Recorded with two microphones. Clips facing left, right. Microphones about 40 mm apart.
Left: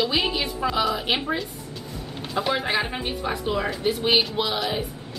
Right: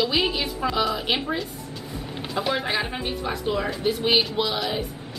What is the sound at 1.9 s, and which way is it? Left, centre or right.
Vehicle, centre.